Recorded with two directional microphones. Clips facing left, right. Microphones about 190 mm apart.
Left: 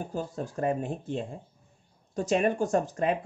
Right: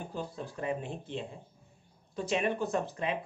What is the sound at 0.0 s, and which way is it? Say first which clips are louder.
Speech: left 5 dB; 45° left (ahead or behind).